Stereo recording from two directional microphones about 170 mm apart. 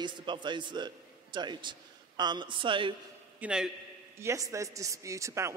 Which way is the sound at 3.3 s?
5° right (ahead or behind).